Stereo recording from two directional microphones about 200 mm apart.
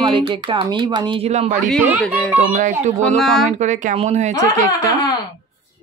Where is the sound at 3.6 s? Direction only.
35° right (ahead or behind).